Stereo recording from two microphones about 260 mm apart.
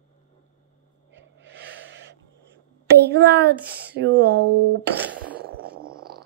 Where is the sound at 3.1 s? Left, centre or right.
Right.